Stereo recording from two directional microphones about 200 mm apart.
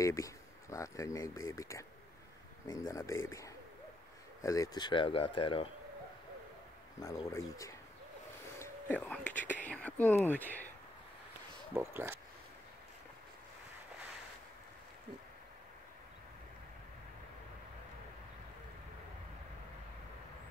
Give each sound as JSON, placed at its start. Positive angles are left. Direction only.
{"t": 0.0, "sound": "speech", "side_deg": 15}
{"t": 2.9, "sound": "speech", "side_deg": 15}
{"t": 7.0, "sound": "speech", "side_deg": 15}
{"t": 8.5, "sound": "a sound", "side_deg": 10}
{"t": 9.6, "sound": "speech", "side_deg": 5}
{"t": 11.7, "sound": "speech", "side_deg": -10}